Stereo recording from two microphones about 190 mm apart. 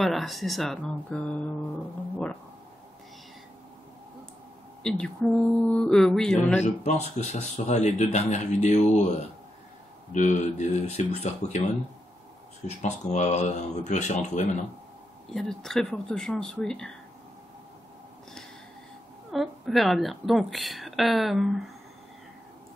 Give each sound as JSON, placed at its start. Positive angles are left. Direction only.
{"t": 0.0, "sound": "a woman's voice", "side_deg": 0}
{"t": 4.8, "sound": "a woman's voice", "side_deg": 5}
{"t": 6.6, "sound": "speech", "side_deg": 35}
{"t": 10.1, "sound": "speech", "side_deg": 40}
{"t": 15.3, "sound": "a woman's voice", "side_deg": 0}
{"t": 19.3, "sound": "a woman's voice", "side_deg": 0}